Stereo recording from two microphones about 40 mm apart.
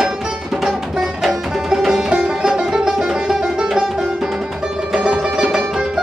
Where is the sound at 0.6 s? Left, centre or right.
Centre.